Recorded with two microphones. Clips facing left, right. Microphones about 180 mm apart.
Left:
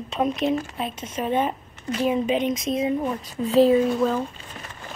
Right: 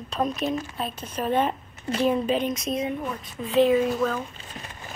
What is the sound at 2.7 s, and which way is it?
Speech, 30° left (ahead or behind).